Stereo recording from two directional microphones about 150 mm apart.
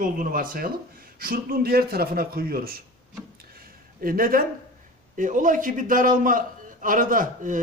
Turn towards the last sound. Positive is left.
turn(degrees=-60)  # may be behind; listen again after turning